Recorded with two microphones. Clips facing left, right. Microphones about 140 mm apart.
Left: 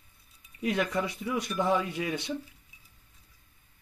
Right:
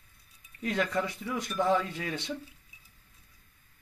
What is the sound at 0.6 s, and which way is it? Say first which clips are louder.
Speech: left 1 dB; 15° left (ahead or behind).